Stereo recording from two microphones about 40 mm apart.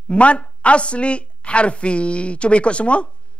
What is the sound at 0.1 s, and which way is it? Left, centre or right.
A woman's voice, left.